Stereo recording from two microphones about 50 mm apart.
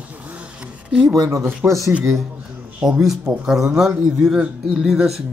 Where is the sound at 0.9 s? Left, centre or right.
Centre.